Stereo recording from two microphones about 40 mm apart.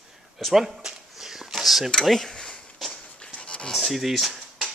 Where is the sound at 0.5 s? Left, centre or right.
Centre.